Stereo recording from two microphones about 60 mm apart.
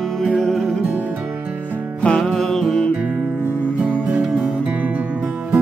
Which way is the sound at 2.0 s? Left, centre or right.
Centre.